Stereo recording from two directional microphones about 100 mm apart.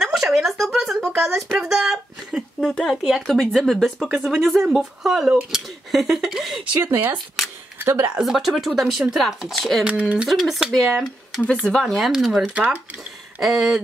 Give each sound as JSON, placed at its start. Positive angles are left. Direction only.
{"t": 0.0, "sound": "speech", "side_deg": 0}
{"t": 2.6, "sound": "speech", "side_deg": 5}
{"t": 6.8, "sound": "speech", "side_deg": -20}
{"t": 8.2, "sound": "speech", "side_deg": 0}
{"t": 9.8, "sound": "speech", "side_deg": -10}
{"t": 10.2, "sound": "speech", "side_deg": 0}